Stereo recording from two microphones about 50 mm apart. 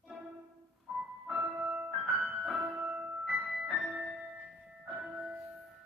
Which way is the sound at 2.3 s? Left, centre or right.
Centre.